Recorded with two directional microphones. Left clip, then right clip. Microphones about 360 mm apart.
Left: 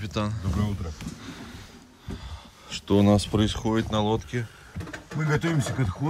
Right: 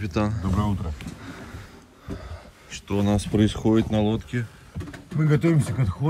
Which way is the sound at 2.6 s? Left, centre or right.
Centre.